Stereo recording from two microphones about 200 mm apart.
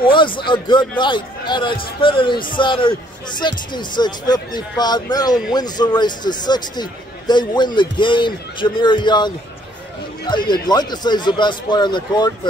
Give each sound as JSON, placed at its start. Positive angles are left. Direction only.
{"t": 0.0, "sound": "a man's voice", "side_deg": 25}